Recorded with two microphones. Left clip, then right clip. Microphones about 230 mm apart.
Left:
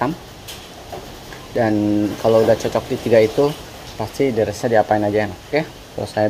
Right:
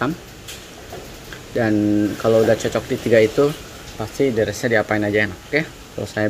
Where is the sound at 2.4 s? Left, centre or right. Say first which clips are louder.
Left 1 dB; centre.